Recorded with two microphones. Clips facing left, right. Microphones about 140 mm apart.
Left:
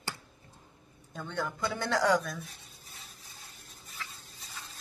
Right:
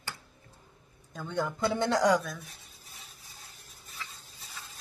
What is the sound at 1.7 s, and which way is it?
Speech, 20° right (ahead or behind).